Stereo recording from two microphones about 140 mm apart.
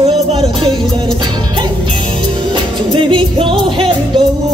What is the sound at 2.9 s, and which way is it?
Music, 40° right (ahead or behind).